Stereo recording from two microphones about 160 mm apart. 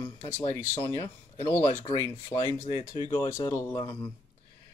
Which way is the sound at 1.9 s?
20° left (ahead or behind).